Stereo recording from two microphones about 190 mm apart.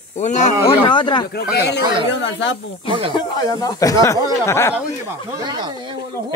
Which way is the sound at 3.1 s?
20° left (ahead or behind).